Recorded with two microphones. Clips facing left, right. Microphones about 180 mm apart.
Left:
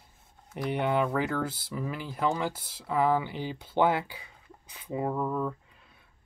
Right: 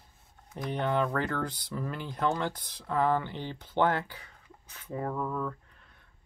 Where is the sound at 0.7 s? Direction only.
10° left (ahead or behind).